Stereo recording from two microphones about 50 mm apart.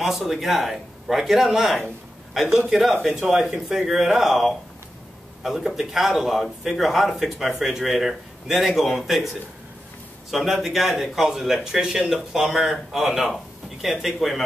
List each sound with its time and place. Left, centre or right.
0.0 s a man's voice: centre
10.3 s a man's voice: centre
11.8 s speech: centre
12.1 s a man's voice: centre